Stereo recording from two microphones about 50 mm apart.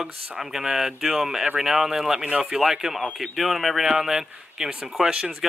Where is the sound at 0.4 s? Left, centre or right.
Centre.